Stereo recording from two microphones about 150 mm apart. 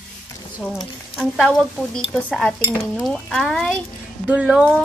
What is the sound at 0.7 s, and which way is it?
Speech, centre (ahead or behind).